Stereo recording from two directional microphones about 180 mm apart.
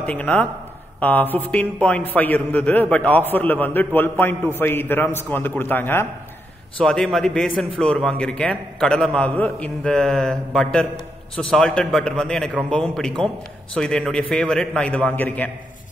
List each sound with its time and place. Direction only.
0.0 s a man's voice: 5° left (ahead or behind)